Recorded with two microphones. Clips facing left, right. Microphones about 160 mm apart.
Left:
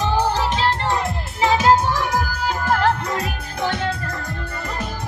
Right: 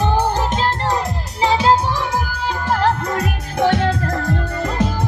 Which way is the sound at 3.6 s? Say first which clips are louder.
Right 6 dB; 90° right.